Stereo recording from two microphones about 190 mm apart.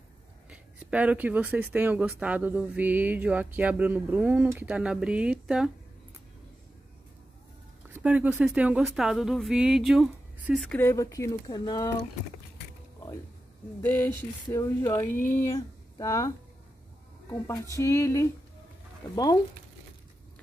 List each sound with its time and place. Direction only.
0.5 s speech: 5° right (ahead or behind)
7.9 s speech: 10° right (ahead or behind)
10.9 s speech: 15° left (ahead or behind)
13.8 s speech: 10° left (ahead or behind)
17.7 s speech: 15° left (ahead or behind)